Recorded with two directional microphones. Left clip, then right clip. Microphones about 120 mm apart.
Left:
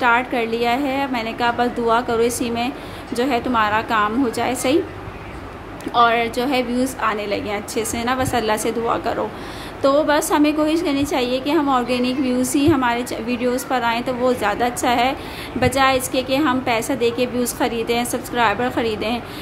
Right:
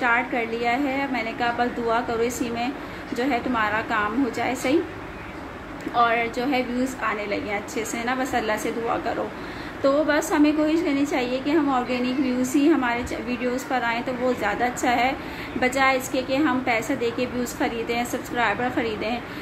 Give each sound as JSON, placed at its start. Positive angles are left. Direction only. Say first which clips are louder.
{"t": 0.0, "sound": "a woman's voice", "louder": "left 5 dB", "side_deg": 25}
{"t": 5.9, "sound": "a woman's voice", "louder": "left 5 dB", "side_deg": 25}